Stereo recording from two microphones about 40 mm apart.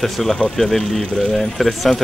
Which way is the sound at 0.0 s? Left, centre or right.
Centre.